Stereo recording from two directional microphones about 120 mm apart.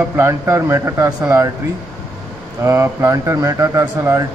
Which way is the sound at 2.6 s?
25° right (ahead or behind).